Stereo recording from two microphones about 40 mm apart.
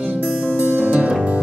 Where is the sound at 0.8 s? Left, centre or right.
Right.